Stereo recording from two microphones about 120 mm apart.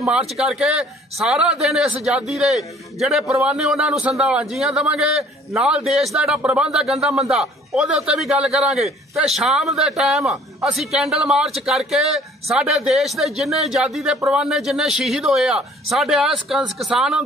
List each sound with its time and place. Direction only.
0.0 s a man's voice: centre (ahead or behind)